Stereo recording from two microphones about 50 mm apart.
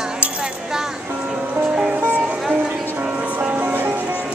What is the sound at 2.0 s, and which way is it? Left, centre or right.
Music, right.